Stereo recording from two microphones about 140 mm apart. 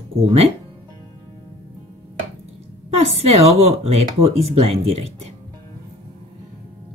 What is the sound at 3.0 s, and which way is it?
Speech, 45° right (ahead or behind).